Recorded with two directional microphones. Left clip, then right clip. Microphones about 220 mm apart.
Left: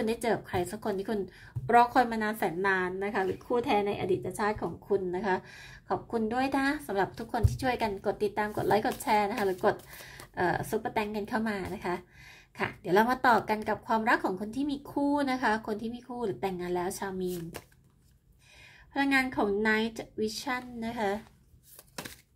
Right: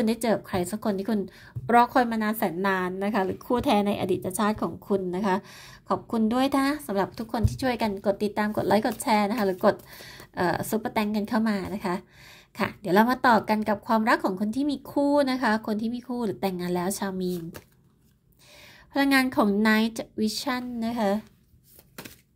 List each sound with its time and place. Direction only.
0.0 s a woman's voice: 25° right (ahead or behind)
18.9 s a woman's voice: 30° right (ahead or behind)